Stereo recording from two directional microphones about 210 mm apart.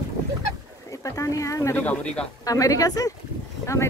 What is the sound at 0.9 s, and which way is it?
Speech, 15° left (ahead or behind).